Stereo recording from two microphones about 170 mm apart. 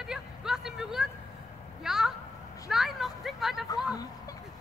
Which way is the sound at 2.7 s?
Centre (ahead or behind).